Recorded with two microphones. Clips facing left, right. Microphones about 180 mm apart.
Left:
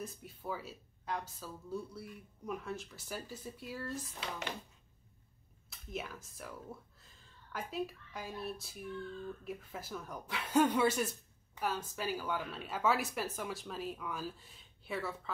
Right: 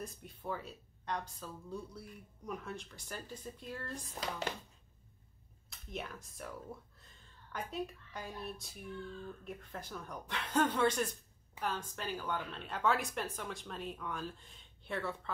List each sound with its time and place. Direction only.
0.0 s speech: 5° left (ahead or behind)
4.1 s speech: 35° right (ahead or behind)
5.7 s speech: centre (ahead or behind)